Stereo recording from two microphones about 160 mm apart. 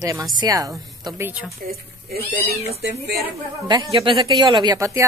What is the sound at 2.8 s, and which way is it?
Speech, 90° right.